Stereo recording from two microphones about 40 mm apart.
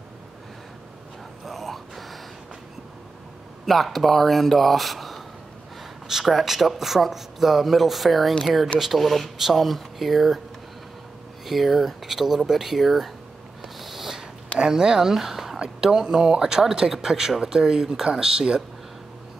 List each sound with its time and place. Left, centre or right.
1.4 s a sound: centre
3.6 s speech: centre
6.2 s speech: centre
11.4 s speech: centre
13.7 s a sound: centre
14.6 s speech: centre